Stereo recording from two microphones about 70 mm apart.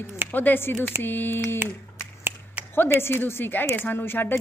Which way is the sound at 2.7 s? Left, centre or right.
Left.